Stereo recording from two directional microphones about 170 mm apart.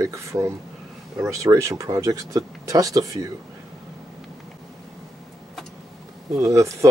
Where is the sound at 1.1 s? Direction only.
15° right (ahead or behind).